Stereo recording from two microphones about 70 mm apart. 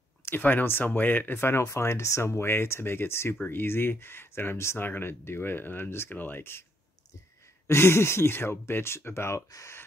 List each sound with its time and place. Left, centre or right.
0.2 s speech: left
7.6 s speech: left